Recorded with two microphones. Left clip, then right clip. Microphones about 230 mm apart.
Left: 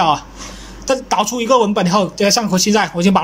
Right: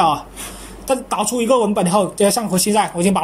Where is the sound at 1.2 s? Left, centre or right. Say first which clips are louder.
Left 2 dB; centre.